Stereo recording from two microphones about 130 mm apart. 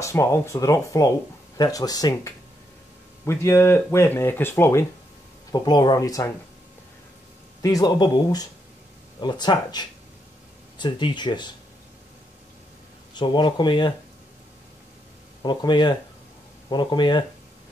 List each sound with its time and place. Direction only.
0.0 s speech: 20° left (ahead or behind)
5.5 s speech: 35° left (ahead or behind)
7.6 s speech: 30° left (ahead or behind)
13.1 s speech: 35° left (ahead or behind)
15.4 s speech: 35° left (ahead or behind)